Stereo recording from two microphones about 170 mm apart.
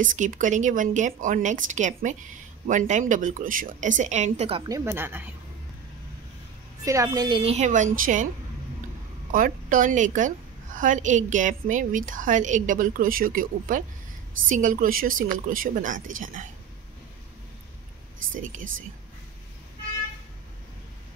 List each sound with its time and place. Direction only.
0.0 s a woman's voice: 50° right (ahead or behind)
4.6 s a woman's voice: 20° right (ahead or behind)
6.8 s a woman's voice: 20° right (ahead or behind)
7.5 s a woman's voice: 45° right (ahead or behind)
9.3 s a woman's voice: 55° right (ahead or behind)